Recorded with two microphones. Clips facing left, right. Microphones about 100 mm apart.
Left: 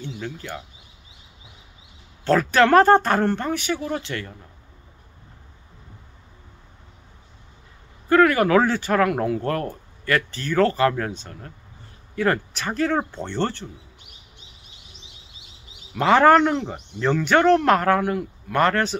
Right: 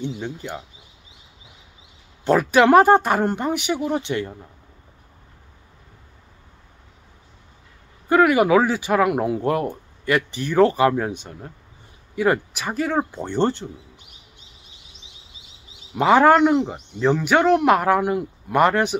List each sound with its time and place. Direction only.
0.0 s speech: 20° right (ahead or behind)
2.2 s speech: 15° right (ahead or behind)
8.1 s speech: 15° right (ahead or behind)
16.0 s speech: 10° right (ahead or behind)